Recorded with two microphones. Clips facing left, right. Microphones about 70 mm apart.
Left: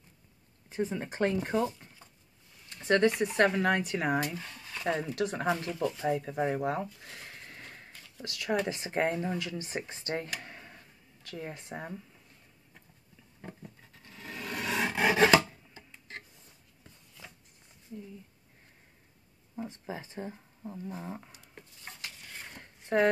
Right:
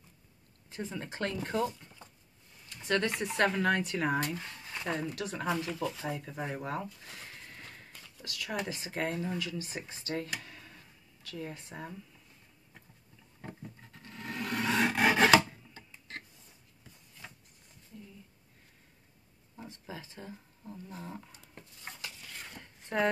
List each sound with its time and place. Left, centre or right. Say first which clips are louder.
0.7 s speech: left 6 dB; centre
3.2 s speech: left 3 dB; centre
4.8 s speech: left 5 dB; left
8.2 s speech: left 6 dB; left
13.4 s a sound: right 1 dB; centre
14.4 s a sound: right 3 dB; right
14.7 s filing: right 1 dB; centre
15.2 s rub: even; centre
19.5 s speech: left 6 dB; left
22.9 s speech: left 4 dB; centre